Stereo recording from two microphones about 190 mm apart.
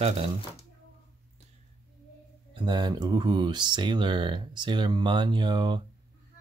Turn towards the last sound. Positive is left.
turn(degrees=-25)  # may be behind; listen again after turning